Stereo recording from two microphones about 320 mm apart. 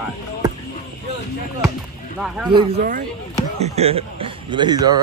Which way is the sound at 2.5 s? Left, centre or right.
Right.